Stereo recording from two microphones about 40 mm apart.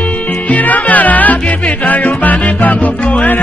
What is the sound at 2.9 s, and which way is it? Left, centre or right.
Music, left.